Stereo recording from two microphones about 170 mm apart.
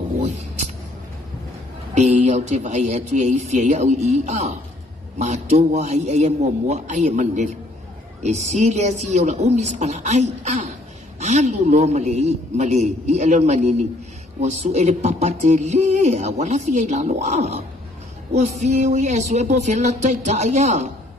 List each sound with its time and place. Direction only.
2.0 s speech: 40° right (ahead or behind)